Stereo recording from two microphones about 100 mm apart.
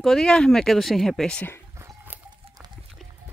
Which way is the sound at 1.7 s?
25° right (ahead or behind).